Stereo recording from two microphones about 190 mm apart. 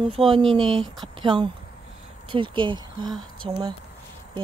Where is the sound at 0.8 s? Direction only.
Centre (ahead or behind).